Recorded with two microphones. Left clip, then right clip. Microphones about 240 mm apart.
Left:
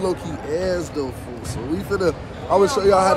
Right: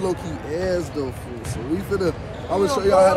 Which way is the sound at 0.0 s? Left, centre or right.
Centre.